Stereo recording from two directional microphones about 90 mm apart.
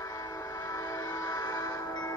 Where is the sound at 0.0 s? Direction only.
40° left (ahead or behind).